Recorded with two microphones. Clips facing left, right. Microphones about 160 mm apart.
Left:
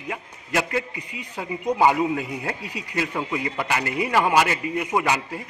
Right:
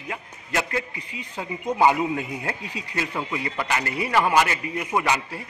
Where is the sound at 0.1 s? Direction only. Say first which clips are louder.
Left 2 dB; 10° left (ahead or behind).